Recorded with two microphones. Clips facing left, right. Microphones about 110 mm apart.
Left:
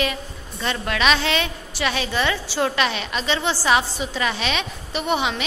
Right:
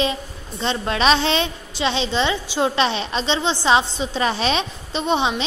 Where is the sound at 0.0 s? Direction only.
25° right (ahead or behind).